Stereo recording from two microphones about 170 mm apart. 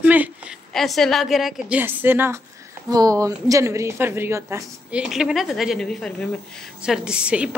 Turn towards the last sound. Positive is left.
turn(degrees=-5)  # may be behind; listen again after turning